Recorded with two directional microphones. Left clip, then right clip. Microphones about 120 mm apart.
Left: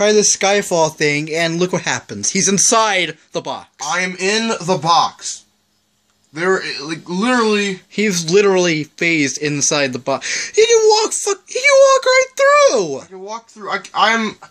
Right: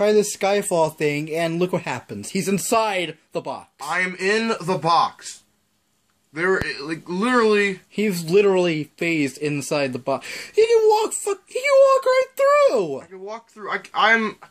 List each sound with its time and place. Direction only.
0.0 s speech: 10° right (ahead or behind)
3.9 s speech: 65° left (ahead or behind)
6.3 s speech: 60° left (ahead or behind)
7.9 s speech: 10° right (ahead or behind)
13.3 s speech: 65° left (ahead or behind)